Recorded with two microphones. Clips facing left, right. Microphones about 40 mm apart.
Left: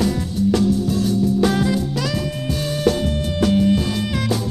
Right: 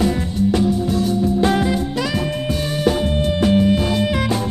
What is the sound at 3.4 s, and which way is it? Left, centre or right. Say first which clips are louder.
Music: even; right.